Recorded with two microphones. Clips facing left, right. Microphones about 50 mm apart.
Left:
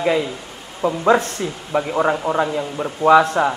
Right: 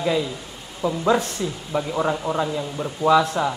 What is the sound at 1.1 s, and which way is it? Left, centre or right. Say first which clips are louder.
A man's voice: left 5 dB; left.